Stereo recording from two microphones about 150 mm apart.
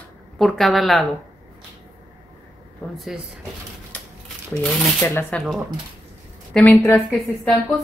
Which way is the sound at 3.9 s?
10° left (ahead or behind).